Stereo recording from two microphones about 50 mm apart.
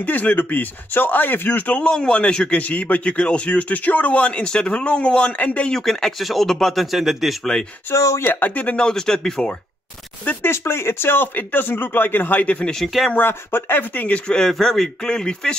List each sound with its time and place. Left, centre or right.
0.0 s speech: left
1.8 s a man's voice: centre
5.7 s a man's voice: centre
7.9 s speech: left
8.2 s speech: left
8.7 s speech: centre
10.5 s speech: left
12.6 s a man's voice: centre
13.2 s speech: left
14.1 s speech: centre